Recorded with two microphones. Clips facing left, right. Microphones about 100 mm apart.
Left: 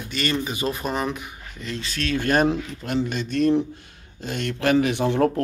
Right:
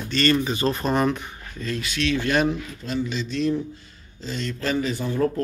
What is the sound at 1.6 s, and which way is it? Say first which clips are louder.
Speech: right 3 dB; 20° left (ahead or behind).